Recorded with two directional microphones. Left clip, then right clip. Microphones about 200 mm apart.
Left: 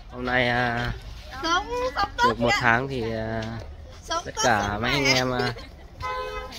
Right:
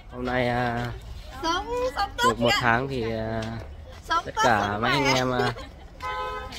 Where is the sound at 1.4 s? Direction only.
20° right (ahead or behind).